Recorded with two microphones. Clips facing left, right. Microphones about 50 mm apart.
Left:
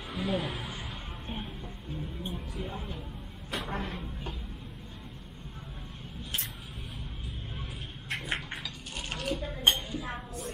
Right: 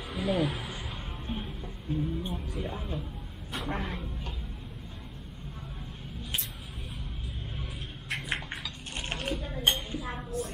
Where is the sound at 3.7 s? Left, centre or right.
Centre.